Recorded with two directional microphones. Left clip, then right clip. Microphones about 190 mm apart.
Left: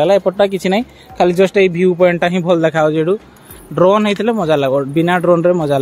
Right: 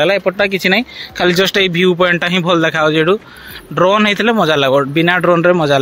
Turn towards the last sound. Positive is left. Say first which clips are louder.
# right 1 dB
turn(degrees=10)  # may be behind; listen again after turning